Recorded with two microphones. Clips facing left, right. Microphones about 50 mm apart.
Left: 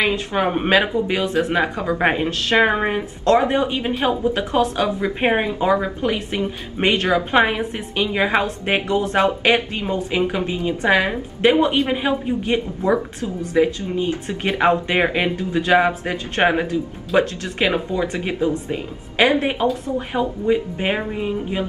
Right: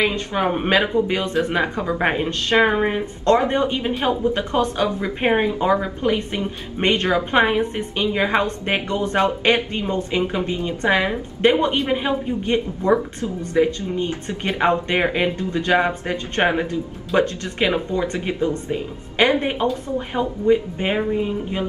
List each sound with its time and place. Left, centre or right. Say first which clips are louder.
0.4 s a woman's voice: left 1 dB; centre
16.6 s a woman's voice: left 2 dB; centre
20.7 s a woman's voice: right 1 dB; centre